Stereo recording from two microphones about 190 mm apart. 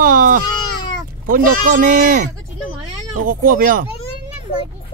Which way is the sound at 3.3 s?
45° right (ahead or behind).